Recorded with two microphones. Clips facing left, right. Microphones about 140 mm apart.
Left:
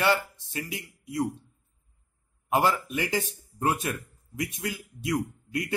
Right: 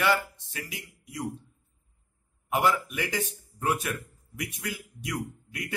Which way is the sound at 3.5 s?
30° left (ahead or behind).